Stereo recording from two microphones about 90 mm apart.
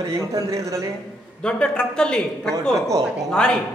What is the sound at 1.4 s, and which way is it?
Speech, 10° left (ahead or behind).